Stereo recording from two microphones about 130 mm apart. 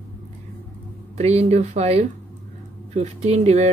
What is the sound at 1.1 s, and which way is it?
Speech, 55° right (ahead or behind).